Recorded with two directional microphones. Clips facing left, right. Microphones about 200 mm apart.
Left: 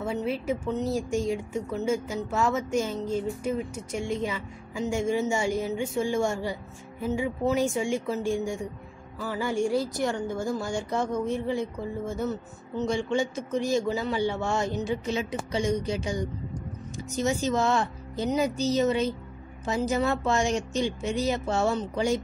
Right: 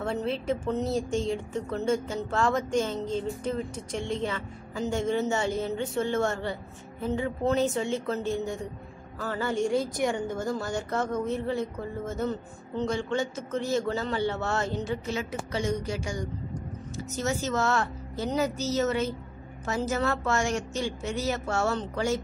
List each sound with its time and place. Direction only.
0.0 s speech: 5° left (ahead or behind)